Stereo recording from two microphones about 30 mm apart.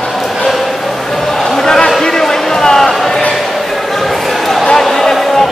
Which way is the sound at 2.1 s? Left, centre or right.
Centre.